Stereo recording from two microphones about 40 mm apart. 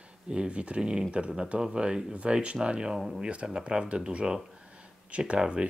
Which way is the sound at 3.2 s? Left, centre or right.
Right.